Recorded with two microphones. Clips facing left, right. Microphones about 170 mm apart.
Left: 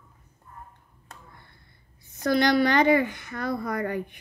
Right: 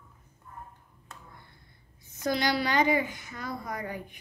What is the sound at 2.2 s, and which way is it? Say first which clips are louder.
A woman's voice: left 7 dB; 55° left (ahead or behind).